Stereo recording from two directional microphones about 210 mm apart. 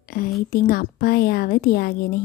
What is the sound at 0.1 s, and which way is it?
A woman's voice, 45° left (ahead or behind).